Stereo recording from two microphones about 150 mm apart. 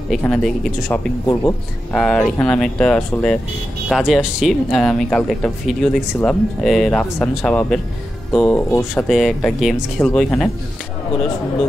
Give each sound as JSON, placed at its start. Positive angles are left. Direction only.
{"t": 0.2, "sound": "speech", "side_deg": 5}
{"t": 1.2, "sound": "speech", "side_deg": 20}
{"t": 2.0, "sound": "speech", "side_deg": 5}
{"t": 9.0, "sound": "speech", "side_deg": 0}